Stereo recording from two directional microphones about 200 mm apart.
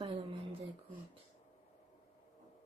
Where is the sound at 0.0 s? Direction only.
25° right (ahead or behind).